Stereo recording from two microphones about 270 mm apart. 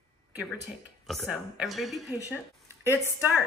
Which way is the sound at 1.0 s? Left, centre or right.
Centre.